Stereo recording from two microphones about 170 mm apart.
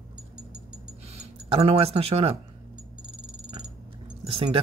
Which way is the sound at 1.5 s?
35° right (ahead or behind).